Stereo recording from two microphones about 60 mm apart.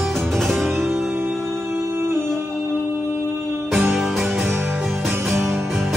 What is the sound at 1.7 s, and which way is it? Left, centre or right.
Music, right.